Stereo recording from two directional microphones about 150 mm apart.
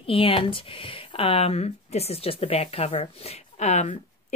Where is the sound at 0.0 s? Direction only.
35° left (ahead or behind).